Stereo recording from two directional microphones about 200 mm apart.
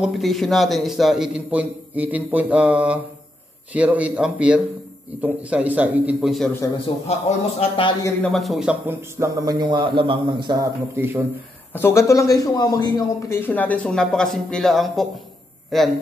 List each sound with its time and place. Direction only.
0.0 s a man's voice: centre (ahead or behind)
7.1 s a man's voice: 30° left (ahead or behind)
8.0 s speech: 5° left (ahead or behind)
11.7 s a man's voice: 15° left (ahead or behind)